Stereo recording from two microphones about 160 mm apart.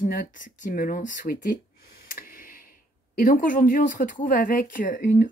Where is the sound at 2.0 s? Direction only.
65° left (ahead or behind).